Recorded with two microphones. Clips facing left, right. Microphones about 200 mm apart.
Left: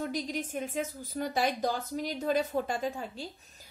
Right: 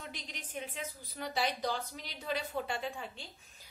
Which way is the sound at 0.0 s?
40° left (ahead or behind).